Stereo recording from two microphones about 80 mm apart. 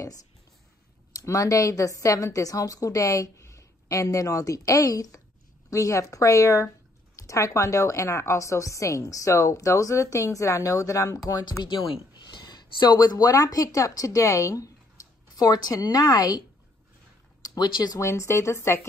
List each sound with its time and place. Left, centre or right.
1.1 s a woman's voice: left
17.9 s a woman's voice: left